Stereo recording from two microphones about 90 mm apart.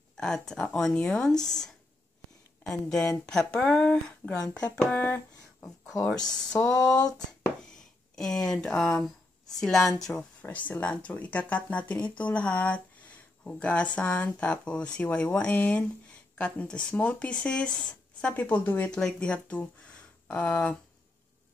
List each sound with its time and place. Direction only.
0.2 s a woman's voice: 5° left (ahead or behind)
6.6 s speech: 10° left (ahead or behind)
8.2 s a woman's voice: 5° left (ahead or behind)
10.1 s a woman's voice: 20° left (ahead or behind)
18.9 s speech: 10° left (ahead or behind)